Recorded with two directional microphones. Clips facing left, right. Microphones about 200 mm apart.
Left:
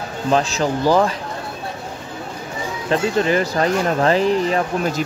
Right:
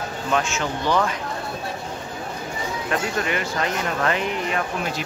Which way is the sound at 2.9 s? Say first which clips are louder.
Left 8 dB; 30° left (ahead or behind).